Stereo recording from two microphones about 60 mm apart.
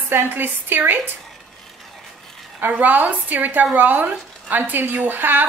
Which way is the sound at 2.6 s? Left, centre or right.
Right.